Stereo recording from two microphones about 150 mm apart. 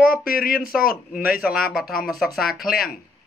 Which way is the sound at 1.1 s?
85° left.